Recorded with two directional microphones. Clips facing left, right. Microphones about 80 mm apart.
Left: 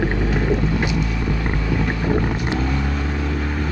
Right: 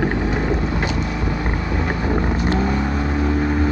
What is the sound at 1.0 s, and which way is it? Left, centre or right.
Vehicle, right.